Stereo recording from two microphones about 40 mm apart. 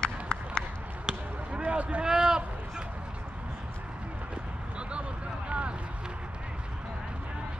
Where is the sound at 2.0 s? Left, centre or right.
Centre.